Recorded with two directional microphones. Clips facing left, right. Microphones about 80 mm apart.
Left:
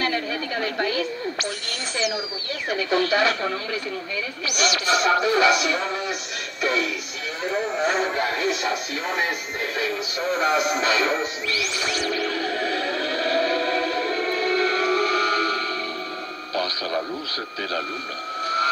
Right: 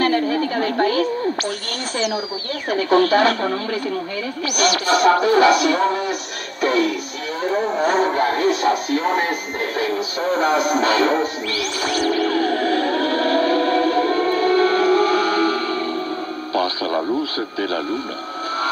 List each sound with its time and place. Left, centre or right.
0.0 s a woman's voice: right
9.8 s music: right
16.5 s speech: right